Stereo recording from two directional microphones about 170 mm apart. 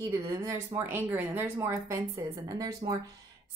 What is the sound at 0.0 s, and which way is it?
A woman's voice, 15° right (ahead or behind).